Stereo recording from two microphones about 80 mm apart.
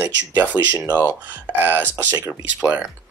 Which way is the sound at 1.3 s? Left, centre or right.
Right.